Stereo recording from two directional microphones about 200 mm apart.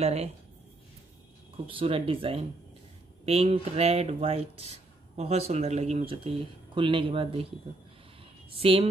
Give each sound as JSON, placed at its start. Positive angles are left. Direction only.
{"t": 0.0, "sound": "speech", "side_deg": -30}
{"t": 1.7, "sound": "speech", "side_deg": -25}
{"t": 8.5, "sound": "speech", "side_deg": -25}